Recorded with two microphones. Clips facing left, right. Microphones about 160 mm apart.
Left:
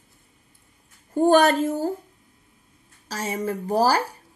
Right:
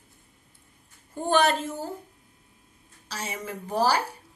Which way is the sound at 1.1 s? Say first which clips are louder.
Left 6 dB; 45° left (ahead or behind).